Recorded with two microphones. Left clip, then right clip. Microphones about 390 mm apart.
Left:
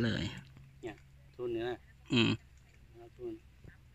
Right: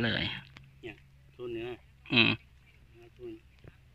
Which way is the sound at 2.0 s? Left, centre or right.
Centre.